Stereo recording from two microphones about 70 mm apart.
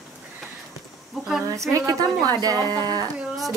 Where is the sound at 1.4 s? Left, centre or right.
Right.